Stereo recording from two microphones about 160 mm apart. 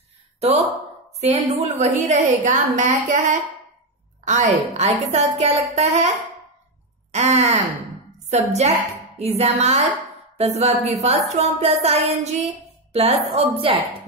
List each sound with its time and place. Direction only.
0.4 s a woman's voice: 45° right (ahead or behind)